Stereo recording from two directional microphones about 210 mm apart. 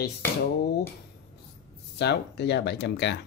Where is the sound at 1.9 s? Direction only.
55° left (ahead or behind).